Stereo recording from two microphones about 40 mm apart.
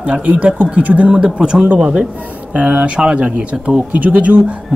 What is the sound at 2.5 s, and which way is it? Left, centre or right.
A man's voice, right.